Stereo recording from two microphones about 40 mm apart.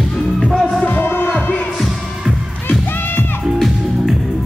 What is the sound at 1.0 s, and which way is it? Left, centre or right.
Music, left.